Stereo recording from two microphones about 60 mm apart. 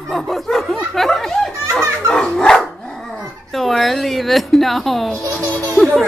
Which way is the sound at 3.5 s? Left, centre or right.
Centre.